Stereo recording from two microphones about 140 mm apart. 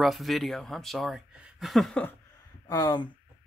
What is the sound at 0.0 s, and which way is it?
Speech, centre (ahead or behind).